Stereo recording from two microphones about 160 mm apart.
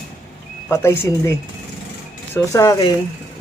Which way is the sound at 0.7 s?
15° left (ahead or behind).